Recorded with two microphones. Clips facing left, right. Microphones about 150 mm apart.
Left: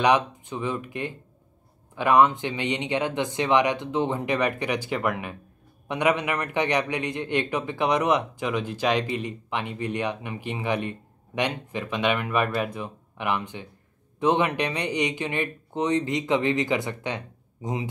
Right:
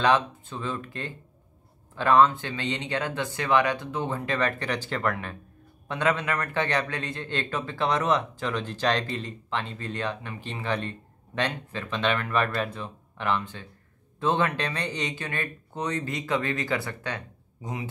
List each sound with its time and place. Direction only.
0.0 s speech: 15° left (ahead or behind)